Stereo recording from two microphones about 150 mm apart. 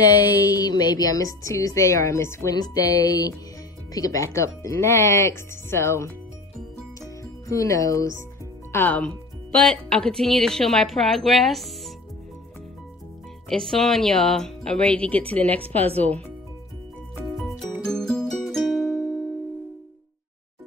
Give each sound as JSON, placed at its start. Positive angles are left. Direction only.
{"t": 0.0, "sound": "a woman's voice", "side_deg": 30}
{"t": 7.0, "sound": "music", "side_deg": 20}
{"t": 8.7, "sound": "a woman's voice", "side_deg": 10}
{"t": 13.5, "sound": "a woman's voice", "side_deg": 5}
{"t": 17.8, "sound": "music", "side_deg": 5}